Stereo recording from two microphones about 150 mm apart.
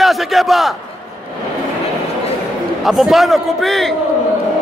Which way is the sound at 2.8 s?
Centre (ahead or behind).